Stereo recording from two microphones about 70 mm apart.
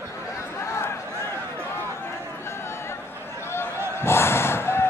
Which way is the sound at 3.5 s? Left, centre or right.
Left.